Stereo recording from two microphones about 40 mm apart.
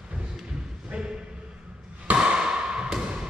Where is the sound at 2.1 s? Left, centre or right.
Right.